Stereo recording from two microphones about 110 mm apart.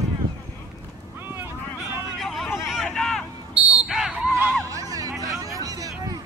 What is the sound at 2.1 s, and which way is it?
Vehicle, centre (ahead or behind).